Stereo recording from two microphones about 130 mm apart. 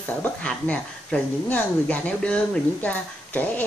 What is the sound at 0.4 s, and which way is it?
Speech, 10° left (ahead or behind).